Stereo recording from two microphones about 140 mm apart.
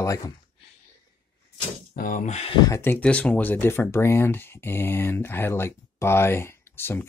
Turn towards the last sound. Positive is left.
turn(degrees=15)  # may be behind; listen again after turning